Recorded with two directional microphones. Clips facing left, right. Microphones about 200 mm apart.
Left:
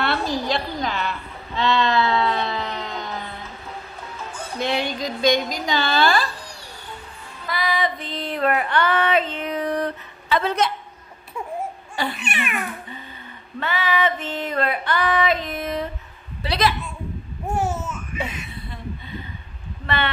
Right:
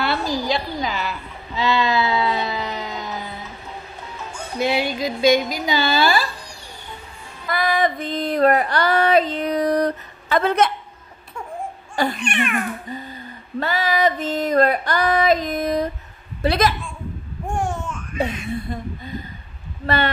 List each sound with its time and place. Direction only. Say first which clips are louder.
0.0 s a sound: right 1 dB; centre (ahead or behind)
4.6 s a woman's voice: right 3 dB; 5° right (ahead or behind)
7.4 s female singing: right 4 dB; 50° right (ahead or behind)
11.9 s cat: right 6 dB; 45° right (ahead or behind)
12.2 s cat: right 5 dB; 5° left (ahead or behind)
13.6 s female singing: right 3 dB; 40° right (ahead or behind)
16.4 s a woman's voice: right 3 dB; 50° right (ahead or behind)
17.5 s babbling: left 1 dB; 5° left (ahead or behind)
18.2 s a sound: right 10 dB; 45° right (ahead or behind)